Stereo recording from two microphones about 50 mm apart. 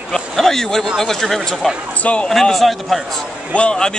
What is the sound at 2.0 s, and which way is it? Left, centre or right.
Speech, left.